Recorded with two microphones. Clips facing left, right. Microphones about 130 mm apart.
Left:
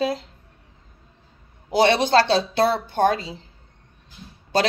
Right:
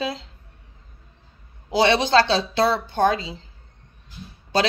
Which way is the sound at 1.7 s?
55° left (ahead or behind).